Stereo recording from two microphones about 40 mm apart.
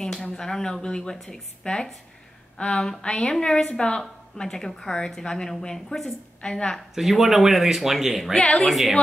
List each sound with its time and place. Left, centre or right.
0.0 s a woman's voice: centre
4.4 s a woman's voice: centre
7.0 s speech: centre